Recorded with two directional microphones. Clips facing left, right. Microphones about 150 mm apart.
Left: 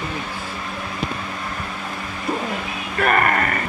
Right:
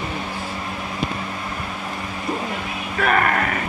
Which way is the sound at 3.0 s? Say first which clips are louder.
Left 1 dB; centre (ahead or behind).